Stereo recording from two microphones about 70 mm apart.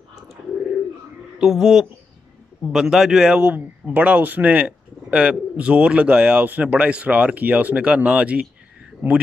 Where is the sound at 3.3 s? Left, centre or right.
Centre.